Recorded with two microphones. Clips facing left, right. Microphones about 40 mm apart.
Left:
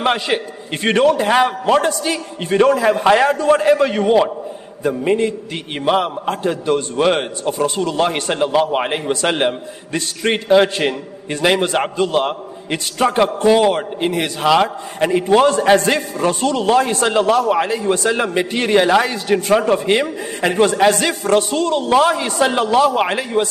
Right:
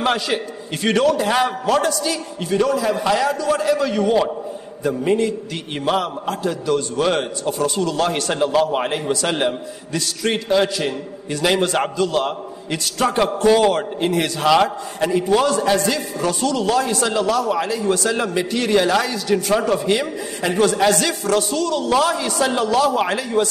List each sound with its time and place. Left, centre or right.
0.0 s a man's voice: left
6.2 s a man's voice: left; by 14.7 s centre
15.0 s a man's voice: left